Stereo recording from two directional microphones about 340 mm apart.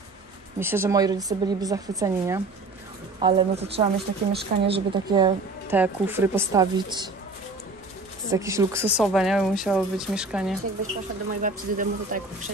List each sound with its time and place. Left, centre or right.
0.6 s a woman's voice: centre
8.3 s speech: centre
11.4 s speech: right